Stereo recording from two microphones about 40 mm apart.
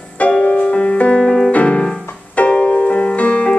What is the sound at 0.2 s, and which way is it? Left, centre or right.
Music, left.